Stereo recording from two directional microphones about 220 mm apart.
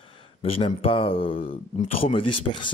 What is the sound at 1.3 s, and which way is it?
A man's voice, 35° left (ahead or behind).